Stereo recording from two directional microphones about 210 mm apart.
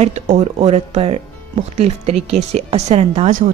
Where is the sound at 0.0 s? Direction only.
35° right (ahead or behind).